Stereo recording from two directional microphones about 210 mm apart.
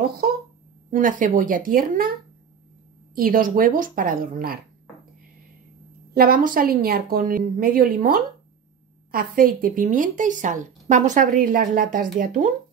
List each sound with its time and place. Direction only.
0.8 s speech: 40° right (ahead or behind)
3.2 s speech: 45° right (ahead or behind)
6.1 s a woman's voice: 45° right (ahead or behind)